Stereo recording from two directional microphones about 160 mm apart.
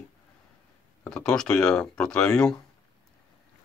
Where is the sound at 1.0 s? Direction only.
5° left (ahead or behind).